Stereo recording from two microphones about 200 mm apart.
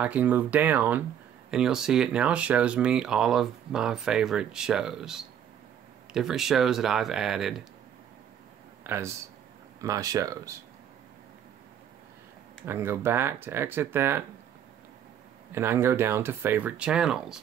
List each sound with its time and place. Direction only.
0.0 s speech: 5° right (ahead or behind)
8.8 s speech: 10° right (ahead or behind)
12.6 s speech: 10° right (ahead or behind)
15.5 s speech: 10° right (ahead or behind)